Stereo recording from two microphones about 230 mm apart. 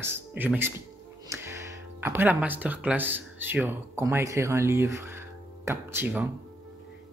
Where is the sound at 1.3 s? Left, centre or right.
Centre.